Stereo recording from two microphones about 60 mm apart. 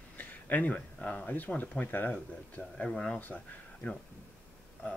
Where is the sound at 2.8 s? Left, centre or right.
Centre.